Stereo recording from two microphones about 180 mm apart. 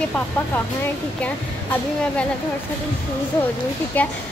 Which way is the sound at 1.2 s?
5° left (ahead or behind).